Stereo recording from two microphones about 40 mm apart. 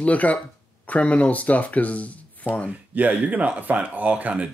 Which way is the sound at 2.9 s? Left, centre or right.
Right.